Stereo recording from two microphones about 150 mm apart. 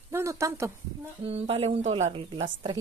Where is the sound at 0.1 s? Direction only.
20° right (ahead or behind).